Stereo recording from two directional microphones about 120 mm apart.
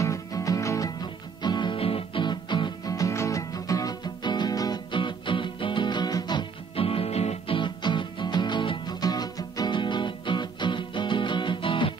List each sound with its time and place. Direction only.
0.0 s music: 25° left (ahead or behind)
6.7 s music: 50° left (ahead or behind)